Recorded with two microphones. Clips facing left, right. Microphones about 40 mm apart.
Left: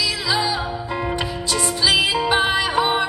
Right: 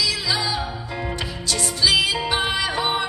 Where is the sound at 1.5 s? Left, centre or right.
Centre.